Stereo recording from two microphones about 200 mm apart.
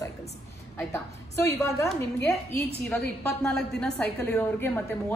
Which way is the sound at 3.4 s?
5° left (ahead or behind).